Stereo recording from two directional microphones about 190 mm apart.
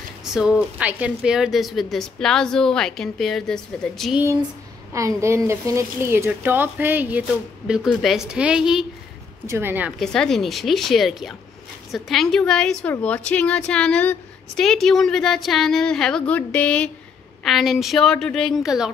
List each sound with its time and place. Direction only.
0.2 s a woman's voice: 5° right (ahead or behind)
4.2 s a woman's voice: 15° right (ahead or behind)
9.9 s a woman's voice: 5° left (ahead or behind)